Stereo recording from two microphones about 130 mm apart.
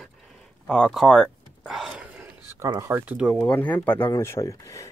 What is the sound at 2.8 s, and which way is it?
Speech, 15° right (ahead or behind).